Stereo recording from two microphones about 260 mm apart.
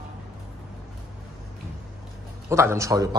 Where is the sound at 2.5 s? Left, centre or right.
Centre.